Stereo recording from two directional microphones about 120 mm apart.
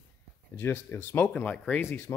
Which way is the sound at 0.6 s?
20° left (ahead or behind).